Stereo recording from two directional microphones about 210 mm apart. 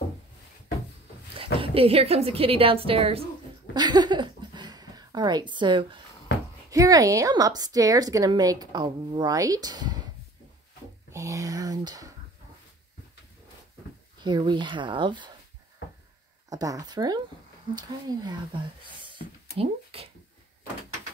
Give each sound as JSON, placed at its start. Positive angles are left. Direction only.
{"t": 1.4, "sound": "a woman's voice", "side_deg": -25}
{"t": 3.7, "sound": "a sound", "side_deg": -20}
{"t": 6.7, "sound": "a woman's voice", "side_deg": -15}
{"t": 11.1, "sound": "speech", "side_deg": -15}
{"t": 14.2, "sound": "a woman's voice", "side_deg": -20}
{"t": 16.4, "sound": "a woman's voice", "side_deg": -15}
{"t": 19.0, "sound": "a sound", "side_deg": -25}